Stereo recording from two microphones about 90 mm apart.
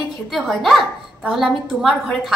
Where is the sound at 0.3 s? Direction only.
Centre (ahead or behind).